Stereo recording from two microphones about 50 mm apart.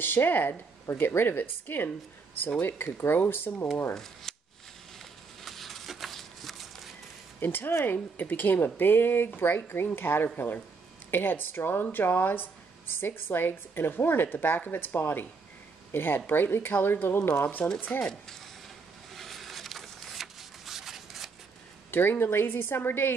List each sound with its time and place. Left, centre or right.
0.0 s a woman's voice: left
3.9 s speech: centre
4.9 s a sound: centre
7.3 s a woman's voice: left
17.4 s speech: left
17.9 s a woman's voice: left
19.1 s a sound: centre
21.9 s a woman's voice: left